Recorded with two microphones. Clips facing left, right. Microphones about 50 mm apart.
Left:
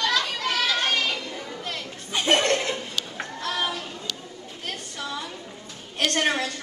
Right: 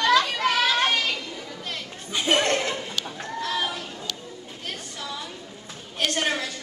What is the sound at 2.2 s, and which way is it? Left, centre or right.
Laughter, centre.